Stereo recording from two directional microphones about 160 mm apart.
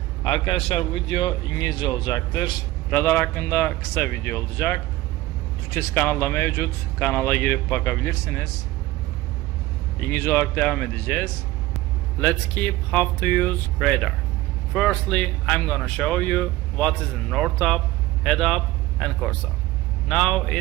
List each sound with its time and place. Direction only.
0.2 s speech: 30° left (ahead or behind); by 8.5 s 15° left (ahead or behind)
9.9 s speech: 15° left (ahead or behind)